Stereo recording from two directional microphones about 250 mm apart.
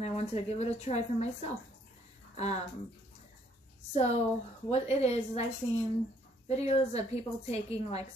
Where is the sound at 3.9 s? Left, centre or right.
Left.